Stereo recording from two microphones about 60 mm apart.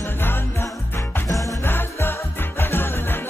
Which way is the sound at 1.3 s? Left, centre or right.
Left.